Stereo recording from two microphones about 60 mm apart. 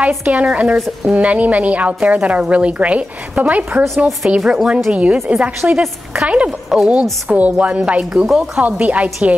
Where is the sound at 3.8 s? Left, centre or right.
Centre.